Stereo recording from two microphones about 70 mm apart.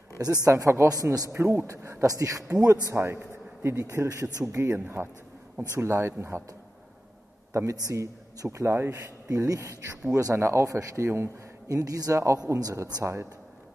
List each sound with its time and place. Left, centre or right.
0.5 s a woman's voice: right
1.3 s speech: right
4.5 s speech: right
4.7 s speech: right
7.9 s speech: right
8.9 s speech: right
11.7 s a woman's voice: right